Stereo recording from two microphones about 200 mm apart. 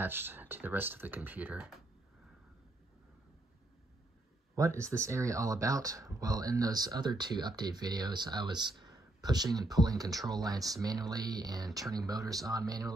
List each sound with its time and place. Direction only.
0.0 s speech: 10° right (ahead or behind)
4.8 s speech: 15° right (ahead or behind)